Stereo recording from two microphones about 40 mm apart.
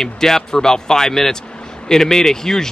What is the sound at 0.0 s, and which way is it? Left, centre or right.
Speech, centre.